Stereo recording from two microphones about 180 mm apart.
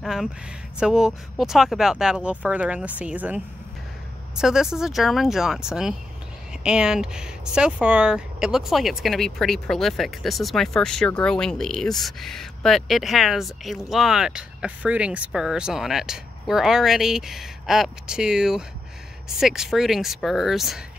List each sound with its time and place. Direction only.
0.0 s speech: centre (ahead or behind)